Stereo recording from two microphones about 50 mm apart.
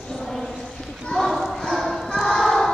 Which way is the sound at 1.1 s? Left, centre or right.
Centre.